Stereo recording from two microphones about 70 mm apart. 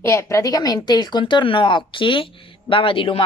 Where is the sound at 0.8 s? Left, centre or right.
Left.